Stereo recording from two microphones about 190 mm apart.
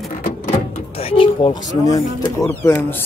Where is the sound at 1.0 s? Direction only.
30° left (ahead or behind).